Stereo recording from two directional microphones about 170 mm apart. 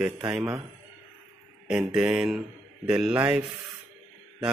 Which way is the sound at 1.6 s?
5° right (ahead or behind).